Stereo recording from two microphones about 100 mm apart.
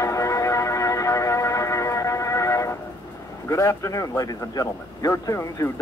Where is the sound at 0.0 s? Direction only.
30° left (ahead or behind).